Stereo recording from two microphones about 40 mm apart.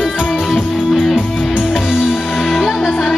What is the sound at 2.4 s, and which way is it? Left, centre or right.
Music, centre.